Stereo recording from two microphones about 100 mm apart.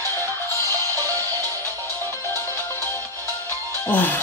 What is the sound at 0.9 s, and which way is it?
Music, 30° right (ahead or behind).